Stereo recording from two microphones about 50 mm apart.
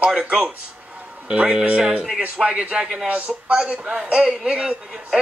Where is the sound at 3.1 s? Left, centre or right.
Right.